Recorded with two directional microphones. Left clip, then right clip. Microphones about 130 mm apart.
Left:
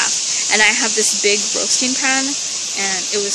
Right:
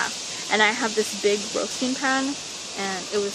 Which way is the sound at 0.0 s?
20° left (ahead or behind).